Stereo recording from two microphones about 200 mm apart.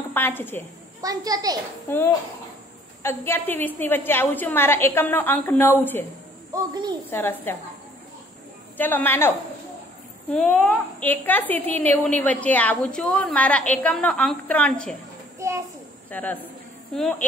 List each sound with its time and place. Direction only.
0.1 s a woman's voice: 10° left (ahead or behind)
1.0 s a child's voice: 20° right (ahead or behind)
1.9 s a woman's voice: 10° left (ahead or behind)
6.5 s a child's voice: 20° right (ahead or behind)
7.1 s a woman's voice: 10° left (ahead or behind)
8.7 s a woman's voice: 10° left (ahead or behind)
10.3 s a woman's voice: 5° left (ahead or behind)
15.3 s a sound: 15° right (ahead or behind)
16.1 s a woman's voice: 10° left (ahead or behind)